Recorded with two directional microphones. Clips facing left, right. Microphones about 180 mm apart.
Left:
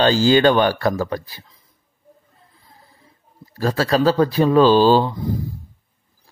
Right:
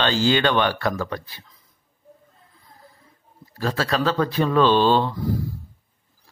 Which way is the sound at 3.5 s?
40° left (ahead or behind).